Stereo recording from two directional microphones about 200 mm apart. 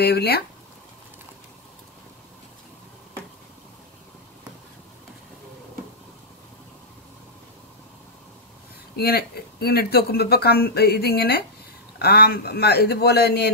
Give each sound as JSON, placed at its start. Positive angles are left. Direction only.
{"t": 0.0, "sound": "speech", "side_deg": 55}
{"t": 8.9, "sound": "speech", "side_deg": 50}